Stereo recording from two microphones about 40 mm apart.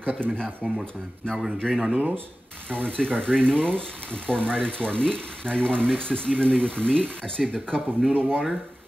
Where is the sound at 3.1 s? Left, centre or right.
Right.